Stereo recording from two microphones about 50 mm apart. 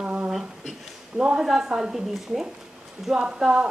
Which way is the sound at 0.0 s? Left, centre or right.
Right.